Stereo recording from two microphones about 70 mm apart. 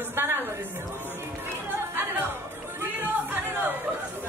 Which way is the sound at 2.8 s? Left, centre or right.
Right.